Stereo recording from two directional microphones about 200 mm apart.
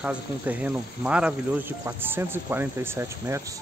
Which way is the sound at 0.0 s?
5° right (ahead or behind).